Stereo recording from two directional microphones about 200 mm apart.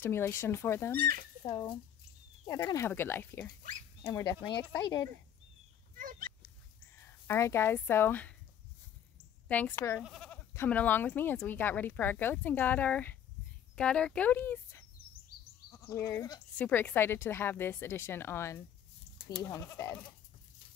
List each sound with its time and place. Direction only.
0.0 s speech: 10° left (ahead or behind)
5.9 s speech: 45° right (ahead or behind)
7.0 s speech: 10° left (ahead or behind)
9.5 s speech: 10° left (ahead or behind)